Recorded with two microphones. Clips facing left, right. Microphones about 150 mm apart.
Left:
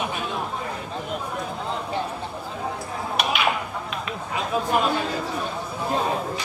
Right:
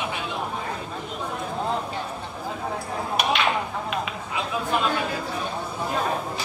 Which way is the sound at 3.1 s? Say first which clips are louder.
Even; 5° left (ahead or behind).